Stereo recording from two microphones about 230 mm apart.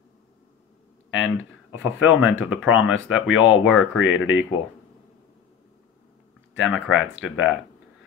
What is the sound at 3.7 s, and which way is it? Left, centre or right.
Speech, left.